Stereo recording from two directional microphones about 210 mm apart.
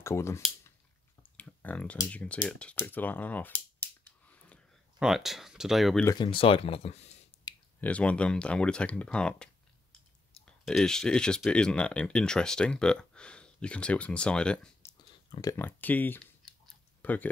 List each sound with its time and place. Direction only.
0.0 s speech: 15° left (ahead or behind)
1.2 s clicking: 5° left (ahead or behind)
4.9 s speech: centre (ahead or behind)
6.0 s speech: 20° left (ahead or behind)
7.5 s clicking: 20° left (ahead or behind)
7.8 s speech: 5° left (ahead or behind)